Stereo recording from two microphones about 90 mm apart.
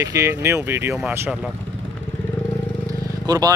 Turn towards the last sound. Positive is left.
turn(degrees=-45)  # may be behind; listen again after turning